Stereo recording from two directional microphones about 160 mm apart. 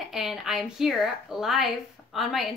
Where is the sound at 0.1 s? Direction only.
Centre (ahead or behind).